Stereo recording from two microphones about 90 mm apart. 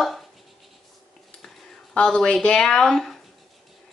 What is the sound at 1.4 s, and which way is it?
Speech, 10° left (ahead or behind).